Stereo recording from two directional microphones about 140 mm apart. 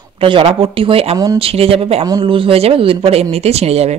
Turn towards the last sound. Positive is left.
turn(degrees=-50)  # may be behind; listen again after turning